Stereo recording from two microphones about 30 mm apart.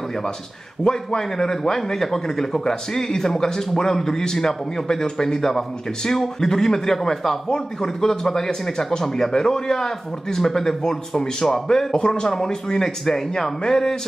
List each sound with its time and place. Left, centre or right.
0.8 s a man's voice: centre
7.4 s a man's voice: left